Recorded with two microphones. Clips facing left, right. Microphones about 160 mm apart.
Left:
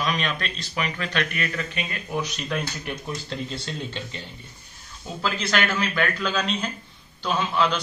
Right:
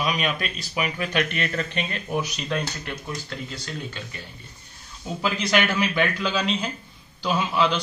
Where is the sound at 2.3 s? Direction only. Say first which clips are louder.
Right 1 dB; centre (ahead or behind).